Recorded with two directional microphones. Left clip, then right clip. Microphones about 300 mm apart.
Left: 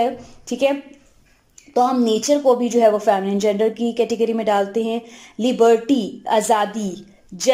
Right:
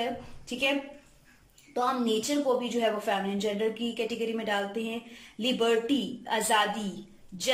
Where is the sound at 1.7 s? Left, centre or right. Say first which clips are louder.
Left 11 dB; centre.